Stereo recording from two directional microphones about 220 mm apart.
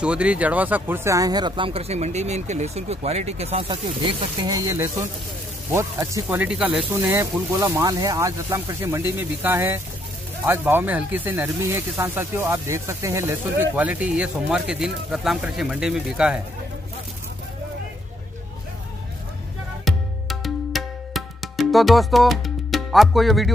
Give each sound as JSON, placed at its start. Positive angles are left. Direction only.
{"t": 0.0, "sound": "speech", "side_deg": -5}
{"t": 19.8, "sound": "music", "side_deg": 0}